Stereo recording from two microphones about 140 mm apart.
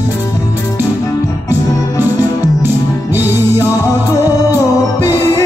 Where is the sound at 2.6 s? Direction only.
15° right (ahead or behind).